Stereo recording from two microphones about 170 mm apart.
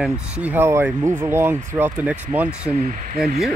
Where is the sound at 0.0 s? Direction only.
10° right (ahead or behind).